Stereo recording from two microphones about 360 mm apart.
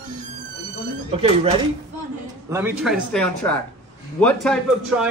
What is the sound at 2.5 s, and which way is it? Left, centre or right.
A man's voice, centre.